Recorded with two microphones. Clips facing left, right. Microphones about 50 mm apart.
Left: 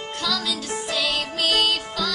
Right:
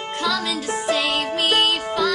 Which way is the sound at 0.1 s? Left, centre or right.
Right.